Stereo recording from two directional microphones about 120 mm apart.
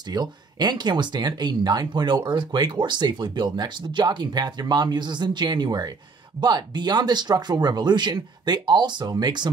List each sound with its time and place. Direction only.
0.1 s speech: 35° right (ahead or behind)